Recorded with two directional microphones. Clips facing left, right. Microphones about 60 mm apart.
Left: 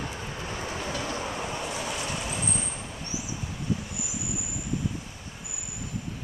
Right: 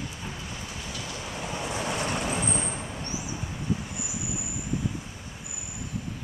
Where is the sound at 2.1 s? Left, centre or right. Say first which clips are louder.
Right 3 dB; right.